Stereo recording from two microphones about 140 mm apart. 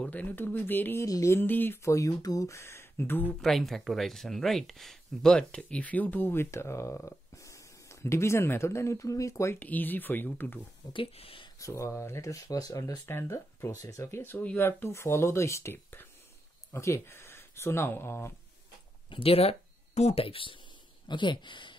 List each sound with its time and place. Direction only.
0.0 s speech: 10° left (ahead or behind)
3.3 s speech: centre (ahead or behind)
10.9 s speech: 40° left (ahead or behind)
11.6 s speech: 20° left (ahead or behind)
19.0 s speech: 40° left (ahead or behind)